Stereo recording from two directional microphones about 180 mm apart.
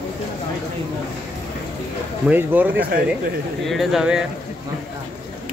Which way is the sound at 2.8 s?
55° right (ahead or behind).